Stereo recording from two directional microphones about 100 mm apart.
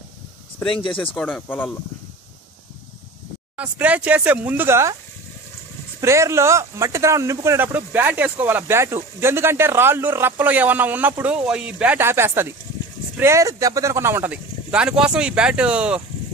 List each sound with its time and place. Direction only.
0.7 s speech: 60° left (ahead or behind)
1.1 s speech: 15° left (ahead or behind)
3.5 s speech: 15° right (ahead or behind)
5.9 s speech: 30° right (ahead or behind); by 12.0 s 15° right (ahead or behind)
12.0 s speech: 25° right (ahead or behind)